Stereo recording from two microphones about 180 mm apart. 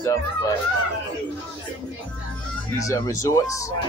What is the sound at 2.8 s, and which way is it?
Speech, 20° left (ahead or behind).